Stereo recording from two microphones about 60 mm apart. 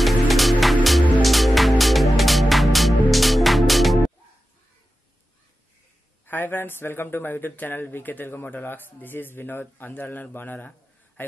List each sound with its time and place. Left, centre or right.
0.0 s music: centre
6.2 s speech: left